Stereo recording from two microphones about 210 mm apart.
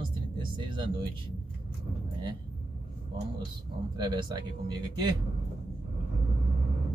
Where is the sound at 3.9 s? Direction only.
20° right (ahead or behind).